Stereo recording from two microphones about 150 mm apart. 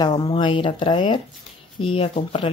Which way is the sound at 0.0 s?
30° left (ahead or behind).